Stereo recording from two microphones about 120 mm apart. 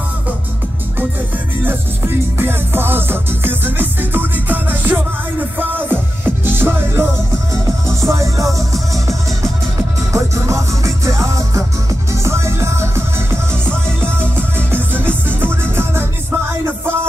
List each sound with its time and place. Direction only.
1.6 s music: 15° right (ahead or behind)
10.1 s music: 25° right (ahead or behind)
15.6 s music: 20° right (ahead or behind)